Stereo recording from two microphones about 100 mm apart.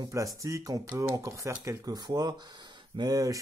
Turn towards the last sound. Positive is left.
turn(degrees=-35)  # may be behind; listen again after turning